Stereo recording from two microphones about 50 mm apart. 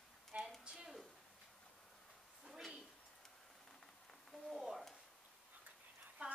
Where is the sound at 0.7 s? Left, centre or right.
Centre.